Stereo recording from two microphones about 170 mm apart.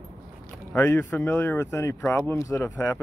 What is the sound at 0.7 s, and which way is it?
Speech, 10° left (ahead or behind).